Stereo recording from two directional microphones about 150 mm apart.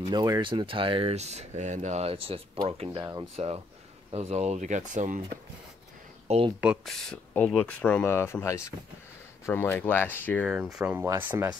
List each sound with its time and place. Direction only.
0.1 s speech: 25° right (ahead or behind); by 5.2 s 55° right (ahead or behind)
6.2 s speech: 45° right (ahead or behind)
6.6 s speech: 5° right (ahead or behind); by 10.5 s 10° left (ahead or behind)
10.5 s speech: 5° right (ahead or behind)